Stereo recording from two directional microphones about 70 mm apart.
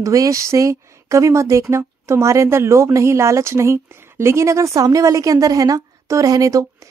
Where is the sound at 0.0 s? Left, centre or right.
Right.